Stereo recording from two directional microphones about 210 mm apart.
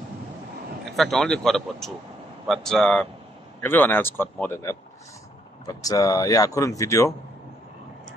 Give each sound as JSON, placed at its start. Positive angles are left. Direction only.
{"t": 0.9, "sound": "speech", "side_deg": 0}